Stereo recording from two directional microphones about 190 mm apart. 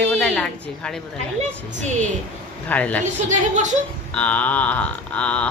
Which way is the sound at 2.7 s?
10° left (ahead or behind).